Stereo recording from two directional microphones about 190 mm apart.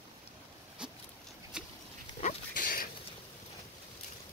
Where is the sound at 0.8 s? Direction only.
5° right (ahead or behind).